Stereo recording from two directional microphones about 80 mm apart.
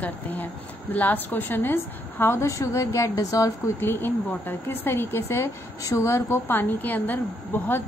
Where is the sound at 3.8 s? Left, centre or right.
Left.